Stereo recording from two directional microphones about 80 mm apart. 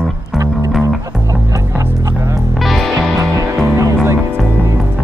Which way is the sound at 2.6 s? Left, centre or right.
Centre.